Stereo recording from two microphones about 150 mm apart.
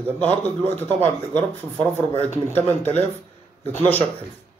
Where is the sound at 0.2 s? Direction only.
10° left (ahead or behind).